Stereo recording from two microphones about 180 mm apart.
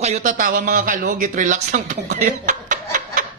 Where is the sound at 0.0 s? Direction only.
40° right (ahead or behind).